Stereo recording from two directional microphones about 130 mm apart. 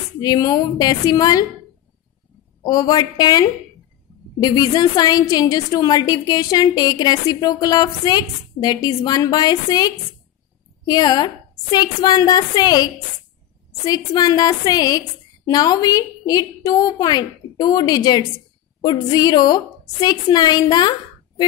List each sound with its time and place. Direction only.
0.2 s a woman's voice: 30° left (ahead or behind)
2.6 s a woman's voice: 30° left (ahead or behind)